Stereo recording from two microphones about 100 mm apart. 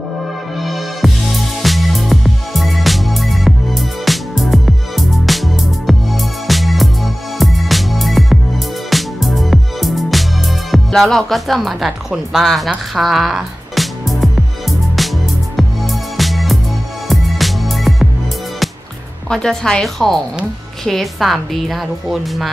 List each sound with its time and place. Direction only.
0.6 s music: centre (ahead or behind)
19.2 s a woman's voice: 5° left (ahead or behind)